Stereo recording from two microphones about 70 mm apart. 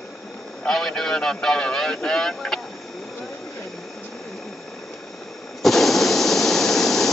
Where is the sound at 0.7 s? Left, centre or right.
Centre.